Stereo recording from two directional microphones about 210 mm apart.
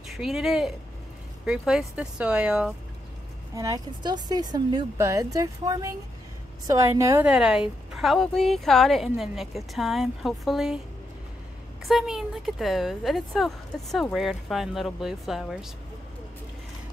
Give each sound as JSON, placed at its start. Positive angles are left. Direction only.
{"t": 0.1, "sound": "speech", "side_deg": 0}
{"t": 3.5, "sound": "speech", "side_deg": -15}
{"t": 11.8, "sound": "speech", "side_deg": 0}